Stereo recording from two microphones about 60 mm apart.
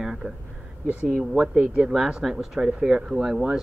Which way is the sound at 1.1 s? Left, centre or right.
Centre.